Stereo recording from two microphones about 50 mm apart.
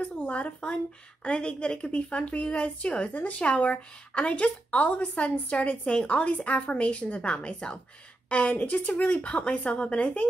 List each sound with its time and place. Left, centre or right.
0.0 s speech: left